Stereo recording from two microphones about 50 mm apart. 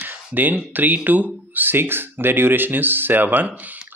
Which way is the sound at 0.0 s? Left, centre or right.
Right.